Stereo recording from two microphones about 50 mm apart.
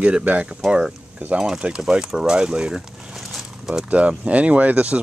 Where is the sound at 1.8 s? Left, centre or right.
Centre.